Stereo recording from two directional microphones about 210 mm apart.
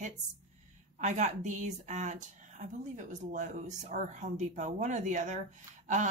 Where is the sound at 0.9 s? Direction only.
35° right (ahead or behind).